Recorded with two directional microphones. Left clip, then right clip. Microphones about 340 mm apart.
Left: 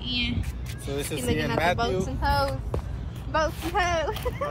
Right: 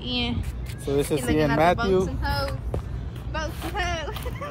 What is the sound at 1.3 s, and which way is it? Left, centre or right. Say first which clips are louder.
Speech: right 5 dB; right.